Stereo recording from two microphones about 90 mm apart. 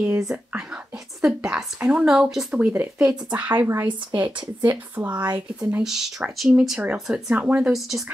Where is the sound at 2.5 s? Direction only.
15° right (ahead or behind).